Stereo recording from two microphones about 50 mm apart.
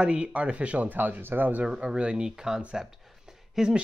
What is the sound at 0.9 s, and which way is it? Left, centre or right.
Speech, right.